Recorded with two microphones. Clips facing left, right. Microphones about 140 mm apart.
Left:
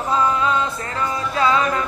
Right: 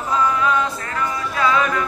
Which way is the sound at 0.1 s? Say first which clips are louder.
Even; 25° left (ahead or behind).